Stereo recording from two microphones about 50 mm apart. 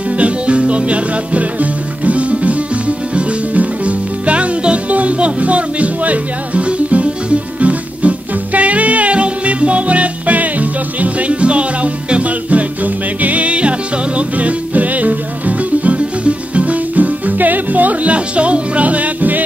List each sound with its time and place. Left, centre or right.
0.2 s music: right